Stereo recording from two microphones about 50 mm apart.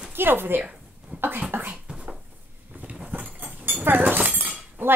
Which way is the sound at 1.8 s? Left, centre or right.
Centre.